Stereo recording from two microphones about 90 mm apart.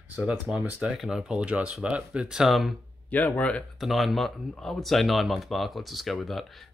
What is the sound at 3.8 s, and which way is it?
Speech, centre (ahead or behind).